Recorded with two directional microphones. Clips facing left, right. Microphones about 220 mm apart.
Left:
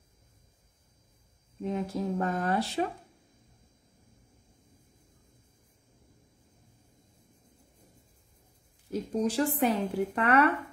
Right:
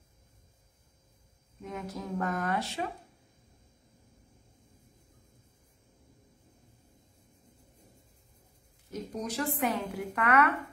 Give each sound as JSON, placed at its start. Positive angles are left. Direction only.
{"t": 1.6, "sound": "speech", "side_deg": 30}
{"t": 8.9, "sound": "a woman's voice", "side_deg": 30}